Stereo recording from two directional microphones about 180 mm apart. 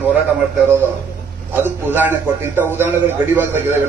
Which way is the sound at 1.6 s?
10° right (ahead or behind).